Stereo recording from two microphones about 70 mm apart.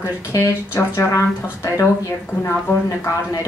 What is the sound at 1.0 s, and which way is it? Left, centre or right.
Speech, left.